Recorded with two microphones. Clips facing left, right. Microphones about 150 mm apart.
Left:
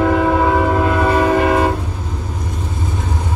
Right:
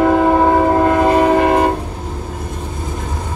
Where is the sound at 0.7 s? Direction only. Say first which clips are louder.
Right 3 dB; 40° right (ahead or behind).